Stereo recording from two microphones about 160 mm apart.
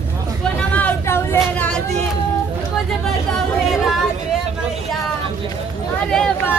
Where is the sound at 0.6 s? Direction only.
10° left (ahead or behind).